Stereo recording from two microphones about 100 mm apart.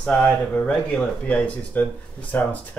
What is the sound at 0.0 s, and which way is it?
Speech, 15° left (ahead or behind).